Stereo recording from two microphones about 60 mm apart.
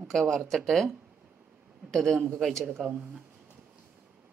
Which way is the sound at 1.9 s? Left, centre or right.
Centre.